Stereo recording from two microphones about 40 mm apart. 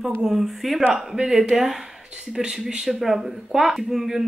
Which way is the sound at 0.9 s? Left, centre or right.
Right.